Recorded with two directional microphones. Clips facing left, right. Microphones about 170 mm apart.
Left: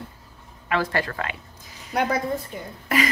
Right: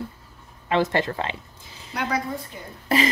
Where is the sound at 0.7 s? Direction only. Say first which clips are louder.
Right 3 dB; 25° right (ahead or behind).